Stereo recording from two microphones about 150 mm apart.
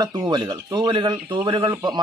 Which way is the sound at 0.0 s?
30° right (ahead or behind).